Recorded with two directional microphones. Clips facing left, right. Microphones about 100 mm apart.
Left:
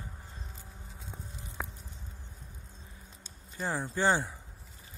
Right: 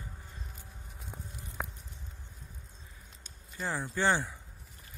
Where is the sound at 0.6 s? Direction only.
25° left (ahead or behind).